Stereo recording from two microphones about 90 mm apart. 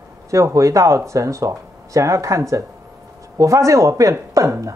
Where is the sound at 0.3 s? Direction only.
35° right (ahead or behind).